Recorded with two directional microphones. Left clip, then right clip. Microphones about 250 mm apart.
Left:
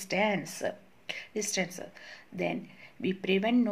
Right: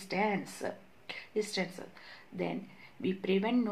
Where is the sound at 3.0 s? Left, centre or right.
Left.